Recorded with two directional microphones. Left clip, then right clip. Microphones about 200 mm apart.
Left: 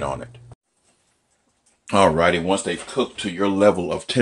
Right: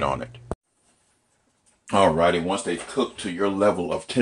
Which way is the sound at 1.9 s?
30° left (ahead or behind).